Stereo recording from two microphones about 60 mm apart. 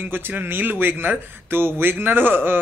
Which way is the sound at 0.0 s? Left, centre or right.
Right.